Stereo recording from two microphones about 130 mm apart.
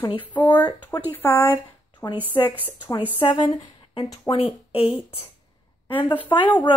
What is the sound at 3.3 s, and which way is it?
Speech, 35° left (ahead or behind).